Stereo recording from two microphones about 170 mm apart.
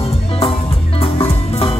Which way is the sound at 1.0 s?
35° left (ahead or behind).